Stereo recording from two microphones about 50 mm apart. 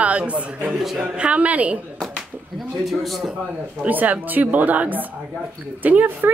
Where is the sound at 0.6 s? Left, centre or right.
Centre.